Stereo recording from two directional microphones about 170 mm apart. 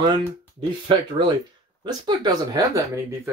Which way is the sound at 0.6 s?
25° right (ahead or behind).